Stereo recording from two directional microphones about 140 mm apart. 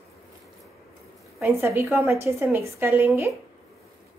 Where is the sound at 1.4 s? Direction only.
15° right (ahead or behind).